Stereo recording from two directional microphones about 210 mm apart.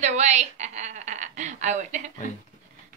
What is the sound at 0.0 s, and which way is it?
A woman's voice, 35° right (ahead or behind).